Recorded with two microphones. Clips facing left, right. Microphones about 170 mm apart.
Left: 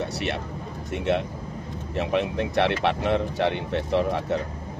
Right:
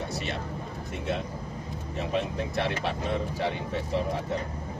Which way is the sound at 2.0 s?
70° left (ahead or behind).